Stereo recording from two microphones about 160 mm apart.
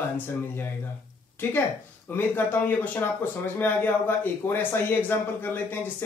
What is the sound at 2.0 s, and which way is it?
Speech, 15° left (ahead or behind).